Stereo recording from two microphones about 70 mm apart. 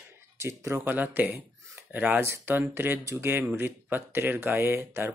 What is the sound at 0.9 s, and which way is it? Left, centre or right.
Speech, right.